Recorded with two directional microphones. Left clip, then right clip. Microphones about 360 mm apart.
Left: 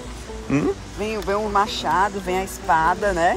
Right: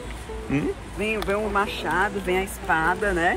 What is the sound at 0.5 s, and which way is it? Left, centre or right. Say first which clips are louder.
Speech: left 5 dB; left.